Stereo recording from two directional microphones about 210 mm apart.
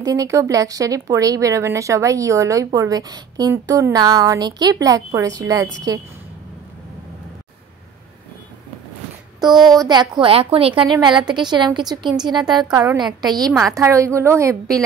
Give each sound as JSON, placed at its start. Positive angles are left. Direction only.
{"t": 0.0, "sound": "speech", "side_deg": -15}
{"t": 9.8, "sound": "a woman's voice", "side_deg": -20}